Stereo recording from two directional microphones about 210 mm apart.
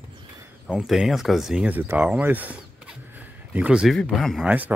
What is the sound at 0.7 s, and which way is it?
Speech, 5° right (ahead or behind).